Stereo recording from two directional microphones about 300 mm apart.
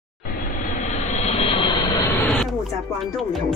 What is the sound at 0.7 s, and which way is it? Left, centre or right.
Vehicle, left.